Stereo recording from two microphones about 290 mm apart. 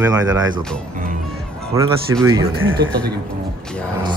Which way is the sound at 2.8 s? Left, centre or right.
Right.